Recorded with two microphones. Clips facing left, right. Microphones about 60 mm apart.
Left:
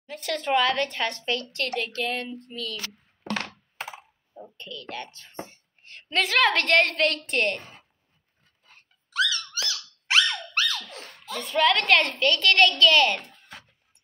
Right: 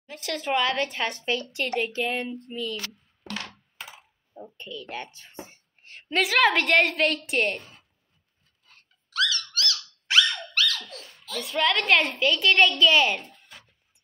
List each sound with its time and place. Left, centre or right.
0.0 s a woman's voice: centre
3.3 s computer keyboard: left
4.6 s a woman's voice: centre
8.6 s dog: centre
10.9 s giggle: left
11.3 s a woman's voice: centre